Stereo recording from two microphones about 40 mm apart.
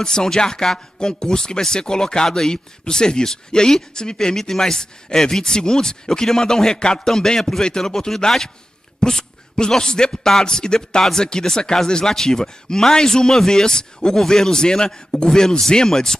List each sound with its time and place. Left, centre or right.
0.0 s a man's voice: centre